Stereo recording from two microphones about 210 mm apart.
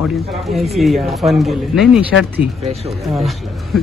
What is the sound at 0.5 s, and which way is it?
Speech, centre (ahead or behind).